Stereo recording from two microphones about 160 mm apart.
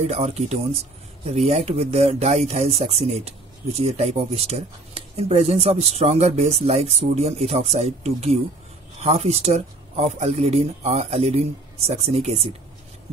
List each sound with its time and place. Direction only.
0.0 s speech: 40° right (ahead or behind)